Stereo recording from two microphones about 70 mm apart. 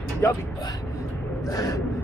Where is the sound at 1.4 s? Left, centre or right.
Left.